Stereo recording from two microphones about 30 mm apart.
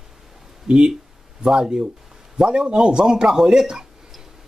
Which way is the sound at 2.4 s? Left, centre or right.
Right.